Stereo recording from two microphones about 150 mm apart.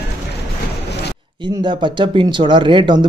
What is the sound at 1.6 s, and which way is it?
Speech, 30° right (ahead or behind).